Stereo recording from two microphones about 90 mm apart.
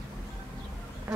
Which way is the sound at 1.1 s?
15° right (ahead or behind).